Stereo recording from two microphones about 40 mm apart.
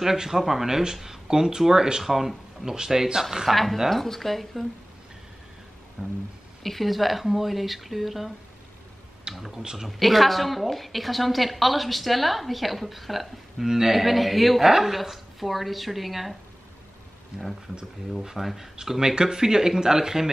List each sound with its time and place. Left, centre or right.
0.0 s speech: centre
3.5 s a woman's voice: centre
6.0 s a sound: right
6.6 s a woman's voice: centre
9.5 s speech: centre
9.8 s a woman's voice: centre
18.2 s speech: centre